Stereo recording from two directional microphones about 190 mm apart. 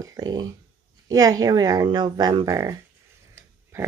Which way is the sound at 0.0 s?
20° right (ahead or behind).